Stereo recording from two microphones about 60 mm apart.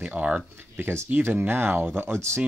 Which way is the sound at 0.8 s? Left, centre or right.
Right.